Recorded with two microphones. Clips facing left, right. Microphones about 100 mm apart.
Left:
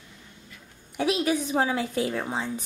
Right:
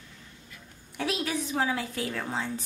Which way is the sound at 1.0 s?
20° left (ahead or behind).